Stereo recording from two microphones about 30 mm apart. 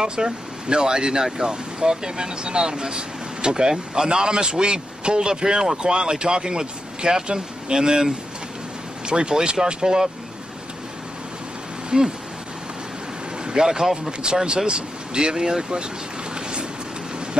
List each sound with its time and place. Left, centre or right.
0.1 s speech: right
11.9 s speech: right
13.5 s speech: right
14.2 s speech: right
16.3 s train: right